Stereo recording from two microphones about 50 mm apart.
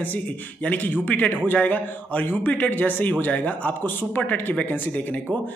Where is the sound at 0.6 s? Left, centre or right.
Left.